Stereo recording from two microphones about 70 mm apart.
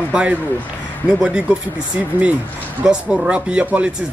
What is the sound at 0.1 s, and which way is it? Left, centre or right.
Speech, centre.